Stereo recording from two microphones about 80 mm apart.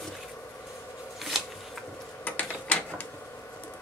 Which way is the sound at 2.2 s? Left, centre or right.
Centre.